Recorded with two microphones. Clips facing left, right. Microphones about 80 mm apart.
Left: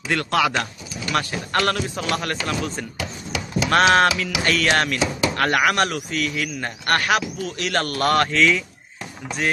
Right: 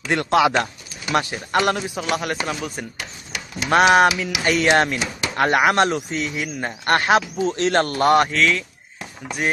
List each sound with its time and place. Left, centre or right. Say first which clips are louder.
0.1 s a man's voice: right 3 dB; right
8.3 s speech: left 1 dB; centre